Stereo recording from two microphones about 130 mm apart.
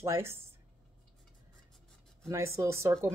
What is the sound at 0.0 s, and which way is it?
Speech, 20° right (ahead or behind).